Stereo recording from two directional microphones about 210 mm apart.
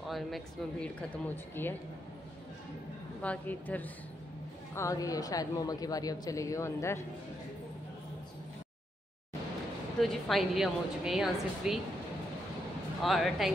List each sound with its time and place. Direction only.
0.1 s speech: 5° left (ahead or behind)
3.2 s speech: 5° left (ahead or behind)
10.2 s a woman's voice: centre (ahead or behind)
13.0 s a woman's voice: centre (ahead or behind)